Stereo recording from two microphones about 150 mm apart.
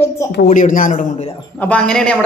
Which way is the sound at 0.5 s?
60° left (ahead or behind).